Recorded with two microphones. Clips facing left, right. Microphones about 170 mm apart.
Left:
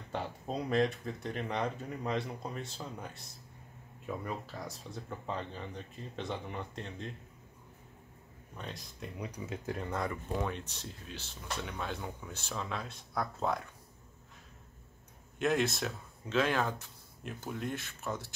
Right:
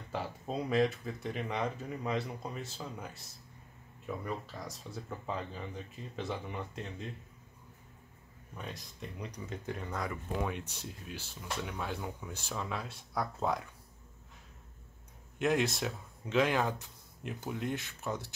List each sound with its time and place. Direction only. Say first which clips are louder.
0.1 s speech: even; 5° right (ahead or behind)
4.3 s speech: even; centre (ahead or behind)
8.5 s speech: even; 5° right (ahead or behind)
9.2 s speech: left 2 dB; 10° left (ahead or behind)
10.5 s speech: right 1 dB; 10° right (ahead or behind)
15.3 s speech: even; 15° right (ahead or behind)